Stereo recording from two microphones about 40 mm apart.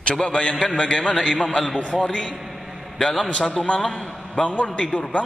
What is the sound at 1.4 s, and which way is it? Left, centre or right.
Speech, left.